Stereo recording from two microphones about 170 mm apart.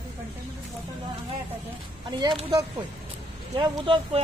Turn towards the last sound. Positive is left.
turn(degrees=-30)  # may be behind; listen again after turning